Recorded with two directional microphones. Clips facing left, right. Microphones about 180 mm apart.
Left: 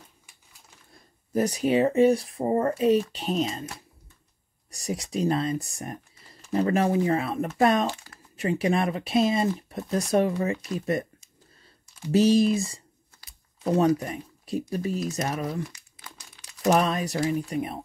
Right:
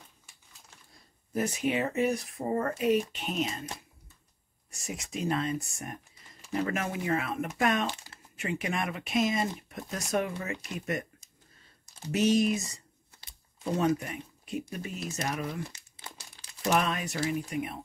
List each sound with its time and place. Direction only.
1.3 s speech: 35° left (ahead or behind)
4.6 s speech: 35° left (ahead or behind)
12.1 s speech: 35° left (ahead or behind)
16.6 s speech: 35° left (ahead or behind)